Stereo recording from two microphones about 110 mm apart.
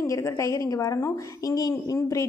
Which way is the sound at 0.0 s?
30° left (ahead or behind).